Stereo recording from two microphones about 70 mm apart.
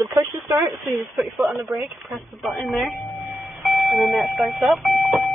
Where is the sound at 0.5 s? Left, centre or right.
Right.